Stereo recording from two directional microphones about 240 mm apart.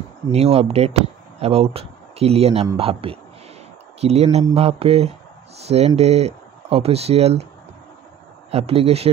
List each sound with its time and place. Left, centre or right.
0.3 s speech: right
8.5 s speech: right